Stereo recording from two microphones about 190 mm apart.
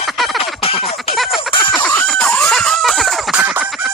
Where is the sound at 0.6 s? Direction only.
30° left (ahead or behind).